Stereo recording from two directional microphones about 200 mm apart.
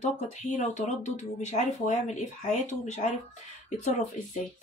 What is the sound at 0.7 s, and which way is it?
Speech, 35° left (ahead or behind).